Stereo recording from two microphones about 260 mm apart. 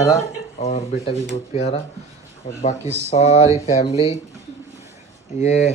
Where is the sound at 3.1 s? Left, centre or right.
Left.